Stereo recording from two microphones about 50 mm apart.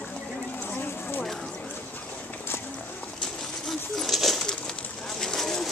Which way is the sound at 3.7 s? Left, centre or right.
Centre.